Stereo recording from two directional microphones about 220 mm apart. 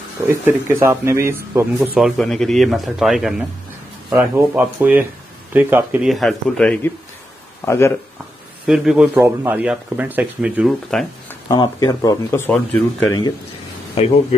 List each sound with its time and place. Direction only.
0.3 s speech: 10° right (ahead or behind)
2.0 s speech: centre (ahead or behind)
8.6 s speech: 5° right (ahead or behind)
11.4 s speech: 20° left (ahead or behind)